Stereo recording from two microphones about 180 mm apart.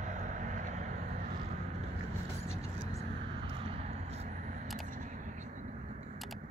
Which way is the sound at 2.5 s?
35° right (ahead or behind).